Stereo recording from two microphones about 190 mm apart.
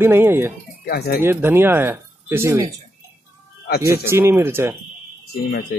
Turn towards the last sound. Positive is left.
turn(degrees=55)  # may be behind; listen again after turning